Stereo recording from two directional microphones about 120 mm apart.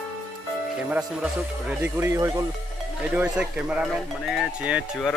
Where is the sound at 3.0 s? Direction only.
10° right (ahead or behind).